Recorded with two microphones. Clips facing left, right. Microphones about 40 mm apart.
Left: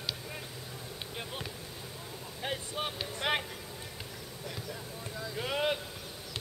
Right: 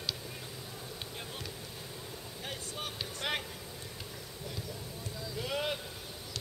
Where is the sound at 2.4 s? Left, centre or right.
Left.